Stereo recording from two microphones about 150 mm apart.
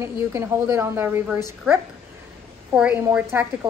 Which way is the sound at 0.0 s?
20° right (ahead or behind).